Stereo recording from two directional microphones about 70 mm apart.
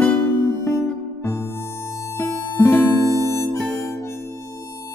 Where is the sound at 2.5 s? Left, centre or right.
Left.